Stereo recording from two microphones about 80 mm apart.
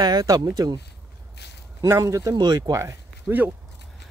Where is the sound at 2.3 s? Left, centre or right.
Right.